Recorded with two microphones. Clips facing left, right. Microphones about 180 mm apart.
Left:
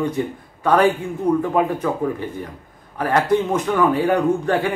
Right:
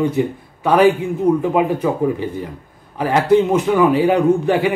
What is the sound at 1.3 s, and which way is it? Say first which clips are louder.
A man's voice: right 2 dB; 15° right (ahead or behind).